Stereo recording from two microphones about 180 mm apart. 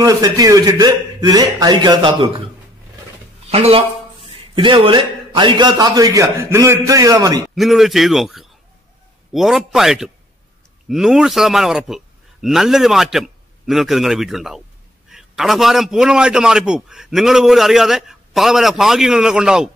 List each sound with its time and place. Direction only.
0.0 s a man's voice: 20° right (ahead or behind)
3.4 s a man's voice: 35° right (ahead or behind)
7.5 s a man's voice: centre (ahead or behind)